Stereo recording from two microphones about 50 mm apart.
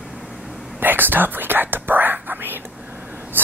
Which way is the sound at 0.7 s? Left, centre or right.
Right.